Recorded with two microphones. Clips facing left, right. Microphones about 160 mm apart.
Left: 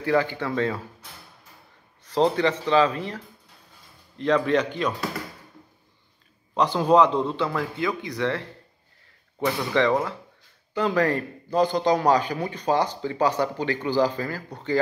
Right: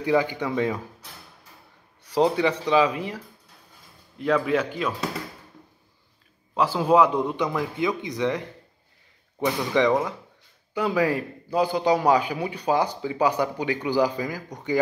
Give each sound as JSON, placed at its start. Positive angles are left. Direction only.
{"t": 0.0, "sound": "a man's voice", "side_deg": -15}
{"t": 2.0, "sound": "a man's voice", "side_deg": -10}
{"t": 4.2, "sound": "a man's voice", "side_deg": -5}
{"t": 6.5, "sound": "a man's voice", "side_deg": -5}
{"t": 9.8, "sound": "a man's voice", "side_deg": -15}